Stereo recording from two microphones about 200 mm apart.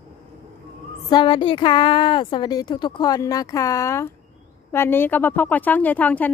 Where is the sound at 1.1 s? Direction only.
25° left (ahead or behind).